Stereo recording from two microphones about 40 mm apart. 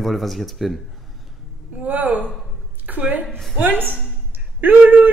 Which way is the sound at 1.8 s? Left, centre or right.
Right.